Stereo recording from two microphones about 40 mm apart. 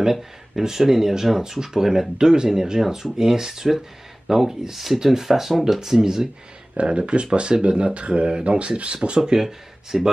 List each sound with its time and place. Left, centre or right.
0.0 s speech: centre
6.8 s speech: right
9.2 s speech: centre